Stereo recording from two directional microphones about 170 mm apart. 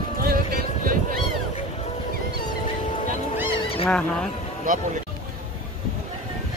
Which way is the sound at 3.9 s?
5° left (ahead or behind).